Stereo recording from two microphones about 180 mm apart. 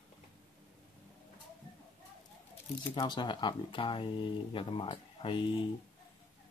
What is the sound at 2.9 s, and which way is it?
Speech, 25° left (ahead or behind).